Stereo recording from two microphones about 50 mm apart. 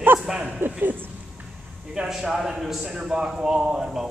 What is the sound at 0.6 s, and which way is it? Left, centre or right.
Speech, right.